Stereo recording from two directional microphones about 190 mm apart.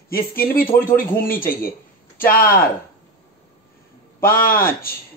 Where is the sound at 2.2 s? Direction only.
50° left (ahead or behind).